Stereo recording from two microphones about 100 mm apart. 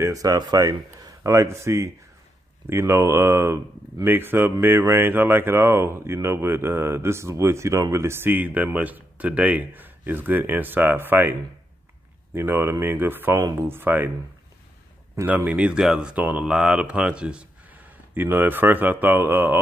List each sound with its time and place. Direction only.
0.0 s speech: 35° right (ahead or behind)
12.4 s speech: 25° right (ahead or behind)
15.2 s speech: 15° right (ahead or behind)